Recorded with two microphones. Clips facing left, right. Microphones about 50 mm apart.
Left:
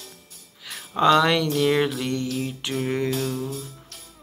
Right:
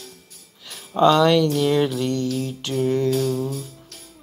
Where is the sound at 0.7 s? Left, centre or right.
Centre.